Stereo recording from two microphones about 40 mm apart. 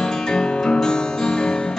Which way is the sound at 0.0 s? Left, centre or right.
Centre.